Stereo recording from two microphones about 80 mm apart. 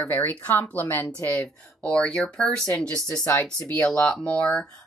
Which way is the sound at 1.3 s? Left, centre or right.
Centre.